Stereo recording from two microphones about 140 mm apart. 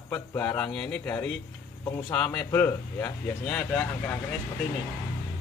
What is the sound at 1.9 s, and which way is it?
Speech, 15° left (ahead or behind).